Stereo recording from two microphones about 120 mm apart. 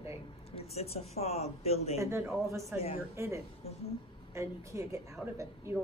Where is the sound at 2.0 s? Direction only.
20° right (ahead or behind).